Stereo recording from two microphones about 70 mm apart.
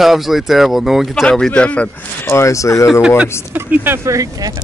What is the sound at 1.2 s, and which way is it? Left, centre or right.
Speech, centre.